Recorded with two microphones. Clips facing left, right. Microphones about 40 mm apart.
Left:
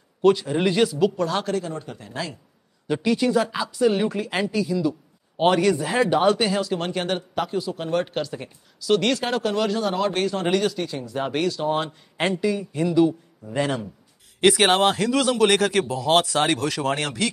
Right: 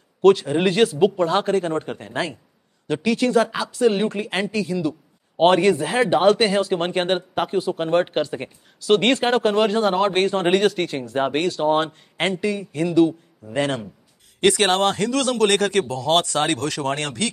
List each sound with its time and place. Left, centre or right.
0.2 s speech: right
0.5 s a man's voice: right
3.8 s speech: right
4.5 s a man's voice: right
11.2 s a man's voice: right
14.4 s speech: centre